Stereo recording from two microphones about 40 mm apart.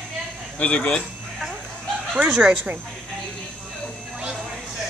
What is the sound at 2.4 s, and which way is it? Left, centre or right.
Speech, right.